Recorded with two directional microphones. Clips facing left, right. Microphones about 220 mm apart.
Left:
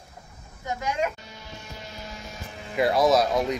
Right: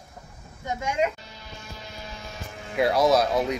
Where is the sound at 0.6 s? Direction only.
25° right (ahead or behind).